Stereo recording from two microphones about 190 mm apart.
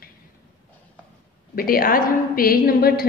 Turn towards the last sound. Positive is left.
turn(degrees=50)  # may be behind; listen again after turning